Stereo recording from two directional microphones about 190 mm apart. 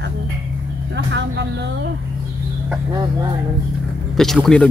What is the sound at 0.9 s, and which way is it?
Speech, 65° right (ahead or behind).